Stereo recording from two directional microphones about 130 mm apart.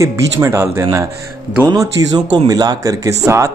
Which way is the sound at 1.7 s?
35° right (ahead or behind).